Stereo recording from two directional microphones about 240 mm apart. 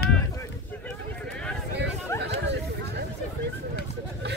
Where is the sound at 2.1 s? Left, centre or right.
Centre.